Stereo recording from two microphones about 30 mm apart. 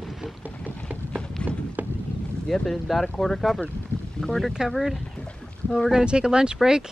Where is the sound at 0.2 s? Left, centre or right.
Centre.